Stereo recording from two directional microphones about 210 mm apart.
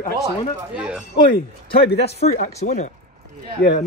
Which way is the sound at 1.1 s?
45° left (ahead or behind).